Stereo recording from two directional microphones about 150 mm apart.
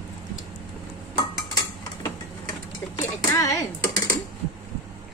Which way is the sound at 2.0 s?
25° left (ahead or behind).